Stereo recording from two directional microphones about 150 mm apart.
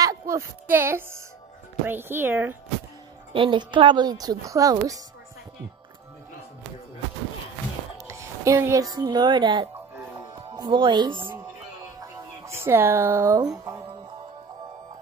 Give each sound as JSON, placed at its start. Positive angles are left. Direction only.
{"t": 0.0, "sound": "speech", "side_deg": -20}
{"t": 3.3, "sound": "speech", "side_deg": -35}
{"t": 8.1, "sound": "music", "side_deg": -20}
{"t": 8.9, "sound": "speech", "side_deg": -30}
{"t": 12.0, "sound": "music", "side_deg": -15}